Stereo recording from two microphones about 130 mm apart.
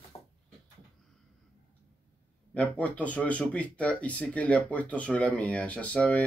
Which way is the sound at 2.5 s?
10° left (ahead or behind).